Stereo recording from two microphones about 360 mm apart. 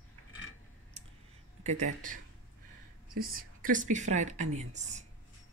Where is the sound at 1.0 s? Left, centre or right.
Centre.